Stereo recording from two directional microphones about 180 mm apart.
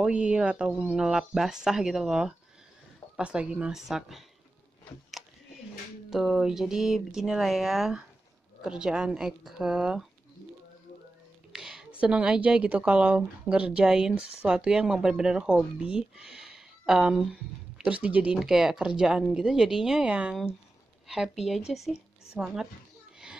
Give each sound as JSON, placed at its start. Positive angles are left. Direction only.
{"t": 0.0, "sound": "a woman's voice", "side_deg": -5}
{"t": 6.0, "sound": "a woman's voice", "side_deg": 0}
{"t": 11.5, "sound": "a woman's voice", "side_deg": 0}